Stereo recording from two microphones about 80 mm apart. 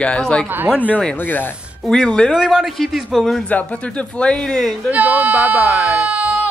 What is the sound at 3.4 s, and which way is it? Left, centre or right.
Speech, centre.